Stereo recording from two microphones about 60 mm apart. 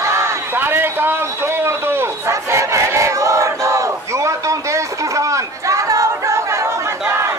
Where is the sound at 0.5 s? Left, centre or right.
Right.